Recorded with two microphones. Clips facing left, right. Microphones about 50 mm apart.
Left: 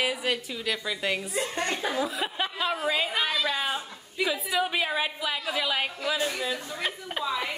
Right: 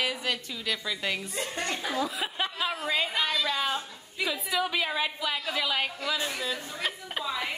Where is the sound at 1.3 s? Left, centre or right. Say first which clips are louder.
Left 3 dB; left.